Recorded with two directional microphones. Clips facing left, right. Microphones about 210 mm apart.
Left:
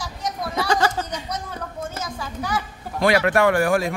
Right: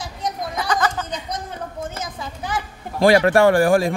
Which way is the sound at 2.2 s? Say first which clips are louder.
Left 1 dB; 20° right (ahead or behind).